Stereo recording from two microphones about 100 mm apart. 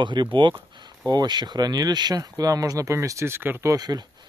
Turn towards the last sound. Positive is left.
turn(degrees=-40)  # may be behind; listen again after turning